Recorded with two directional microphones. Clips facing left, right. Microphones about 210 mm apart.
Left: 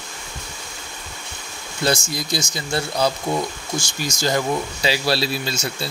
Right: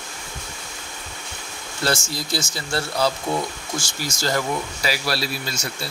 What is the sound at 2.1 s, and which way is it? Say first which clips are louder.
Speech: left 2 dB; 15° left (ahead or behind).